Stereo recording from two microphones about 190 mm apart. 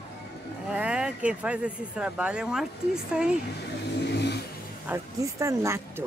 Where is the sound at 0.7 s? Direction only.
5° right (ahead or behind).